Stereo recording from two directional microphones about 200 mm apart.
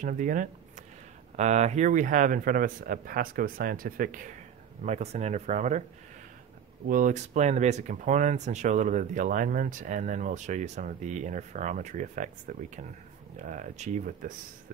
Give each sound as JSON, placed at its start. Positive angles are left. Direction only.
{"t": 0.0, "sound": "a man's voice", "side_deg": -40}
{"t": 6.9, "sound": "speech", "side_deg": -40}